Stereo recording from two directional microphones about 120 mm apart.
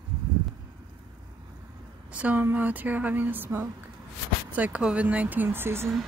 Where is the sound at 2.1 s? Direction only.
10° right (ahead or behind).